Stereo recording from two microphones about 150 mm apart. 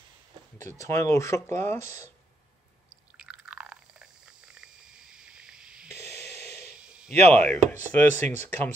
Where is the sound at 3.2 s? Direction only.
5° right (ahead or behind).